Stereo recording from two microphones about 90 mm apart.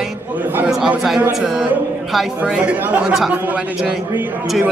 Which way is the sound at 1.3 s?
5° right (ahead or behind).